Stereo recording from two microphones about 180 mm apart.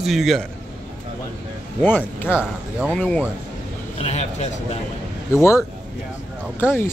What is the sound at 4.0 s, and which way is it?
Speech, 40° left (ahead or behind).